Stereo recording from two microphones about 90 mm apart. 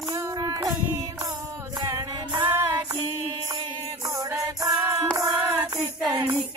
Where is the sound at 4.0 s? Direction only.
40° right (ahead or behind).